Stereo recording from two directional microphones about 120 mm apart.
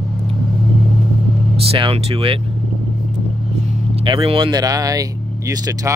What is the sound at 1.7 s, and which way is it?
Speech, 50° right (ahead or behind).